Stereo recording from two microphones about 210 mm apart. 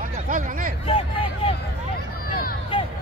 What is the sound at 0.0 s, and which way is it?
Speech, 40° right (ahead or behind).